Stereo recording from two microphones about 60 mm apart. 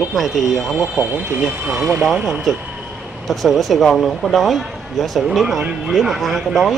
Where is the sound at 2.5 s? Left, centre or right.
Centre.